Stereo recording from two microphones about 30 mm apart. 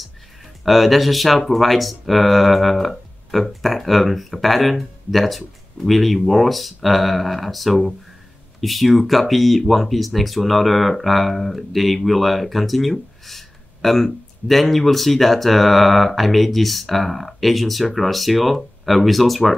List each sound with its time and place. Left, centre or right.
0.7 s speech: centre